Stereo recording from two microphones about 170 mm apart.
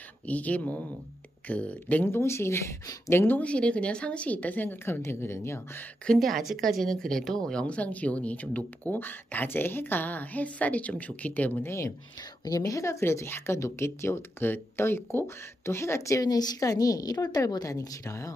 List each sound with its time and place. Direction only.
0.3 s speech: 10° left (ahead or behind)
6.0 s speech: centre (ahead or behind); by 18.3 s 20° left (ahead or behind)